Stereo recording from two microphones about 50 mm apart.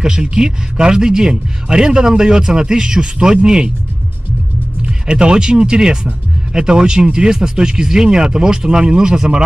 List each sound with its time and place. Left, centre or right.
0.0 s speech: centre
4.8 s speech: centre